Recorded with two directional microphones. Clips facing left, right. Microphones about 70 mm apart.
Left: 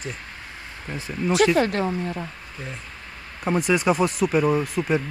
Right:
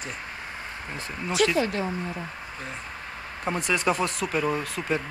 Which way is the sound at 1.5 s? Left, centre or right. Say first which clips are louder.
Left 5 dB; left.